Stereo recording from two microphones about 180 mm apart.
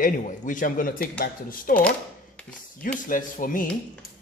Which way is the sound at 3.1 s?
50° left (ahead or behind).